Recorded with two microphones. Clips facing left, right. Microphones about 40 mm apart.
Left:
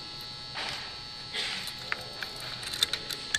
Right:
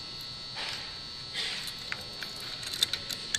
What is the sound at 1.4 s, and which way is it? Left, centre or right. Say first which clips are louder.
Music: left 1 dB; centre.